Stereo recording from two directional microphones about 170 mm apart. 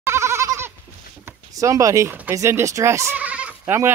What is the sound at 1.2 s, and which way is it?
Speech, 20° right (ahead or behind).